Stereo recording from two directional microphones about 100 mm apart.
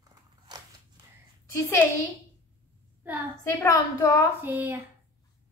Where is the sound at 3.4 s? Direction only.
30° left (ahead or behind).